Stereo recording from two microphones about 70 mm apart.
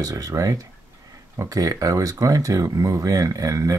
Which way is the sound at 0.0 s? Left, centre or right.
Right.